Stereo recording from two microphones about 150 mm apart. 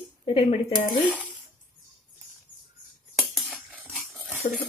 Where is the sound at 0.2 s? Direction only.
45° left (ahead or behind).